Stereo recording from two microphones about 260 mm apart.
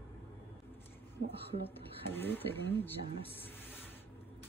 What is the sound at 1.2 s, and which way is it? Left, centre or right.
Speech, right.